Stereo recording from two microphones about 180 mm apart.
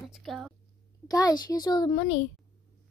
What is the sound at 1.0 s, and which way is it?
Speech, 20° left (ahead or behind).